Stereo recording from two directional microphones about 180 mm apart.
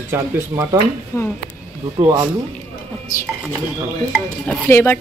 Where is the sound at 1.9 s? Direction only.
15° right (ahead or behind).